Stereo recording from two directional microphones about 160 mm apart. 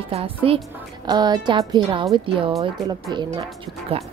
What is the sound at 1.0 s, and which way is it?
Speech, 25° right (ahead or behind).